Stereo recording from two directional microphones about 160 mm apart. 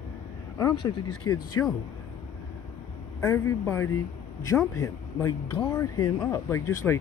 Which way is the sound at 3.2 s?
15° left (ahead or behind).